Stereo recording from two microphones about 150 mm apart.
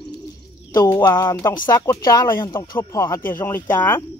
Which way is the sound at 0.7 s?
20° left (ahead or behind).